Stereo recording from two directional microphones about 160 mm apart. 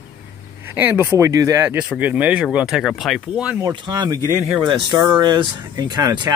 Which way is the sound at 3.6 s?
25° right (ahead or behind).